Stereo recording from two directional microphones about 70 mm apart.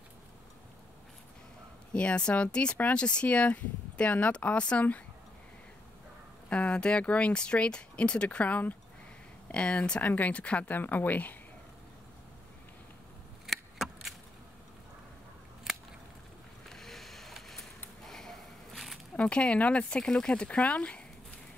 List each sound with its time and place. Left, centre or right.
2.0 s speech: centre
6.5 s speech: centre
13.5 s keys jangling: centre
15.7 s a sound: centre
16.6 s a sound: centre
19.1 s speech: centre